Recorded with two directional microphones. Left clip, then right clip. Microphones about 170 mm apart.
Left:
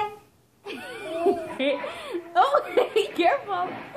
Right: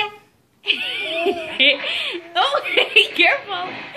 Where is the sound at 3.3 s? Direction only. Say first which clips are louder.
Right 4 dB; 20° right (ahead or behind).